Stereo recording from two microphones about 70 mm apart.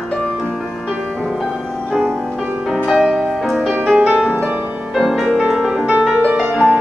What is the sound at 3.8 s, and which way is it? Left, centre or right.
Music, centre.